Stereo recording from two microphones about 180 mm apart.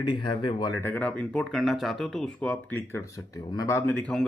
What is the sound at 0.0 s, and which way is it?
Speech, 25° left (ahead or behind).